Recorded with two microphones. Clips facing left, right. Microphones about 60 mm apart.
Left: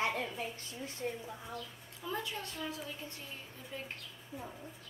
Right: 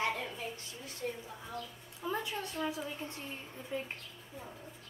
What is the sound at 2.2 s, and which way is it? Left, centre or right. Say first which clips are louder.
Speech: right 4 dB; right.